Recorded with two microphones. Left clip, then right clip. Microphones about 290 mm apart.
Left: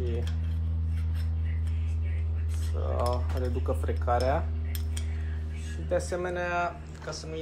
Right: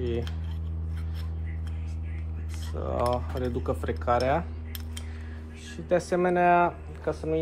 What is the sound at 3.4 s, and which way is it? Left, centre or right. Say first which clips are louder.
Speech: even; right.